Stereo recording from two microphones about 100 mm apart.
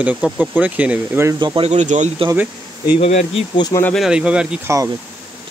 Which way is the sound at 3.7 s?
35° left (ahead or behind).